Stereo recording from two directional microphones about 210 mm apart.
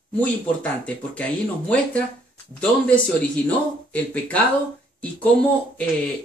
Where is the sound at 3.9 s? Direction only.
5° left (ahead or behind).